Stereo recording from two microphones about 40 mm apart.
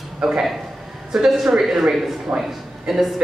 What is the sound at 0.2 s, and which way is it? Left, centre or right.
A man's voice, centre.